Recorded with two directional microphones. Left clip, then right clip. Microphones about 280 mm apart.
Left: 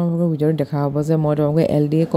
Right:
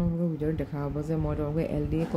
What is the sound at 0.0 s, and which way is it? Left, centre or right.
Speech, left.